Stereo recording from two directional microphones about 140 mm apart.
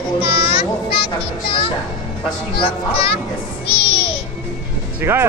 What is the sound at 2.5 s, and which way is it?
Speech, 40° left (ahead or behind).